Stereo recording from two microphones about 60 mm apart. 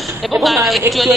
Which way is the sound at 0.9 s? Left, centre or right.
Right.